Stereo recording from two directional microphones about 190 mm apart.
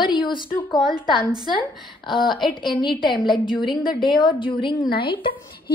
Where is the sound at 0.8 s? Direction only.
Centre (ahead or behind).